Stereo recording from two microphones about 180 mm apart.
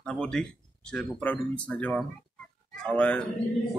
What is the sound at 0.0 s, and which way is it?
Speech, 5° left (ahead or behind).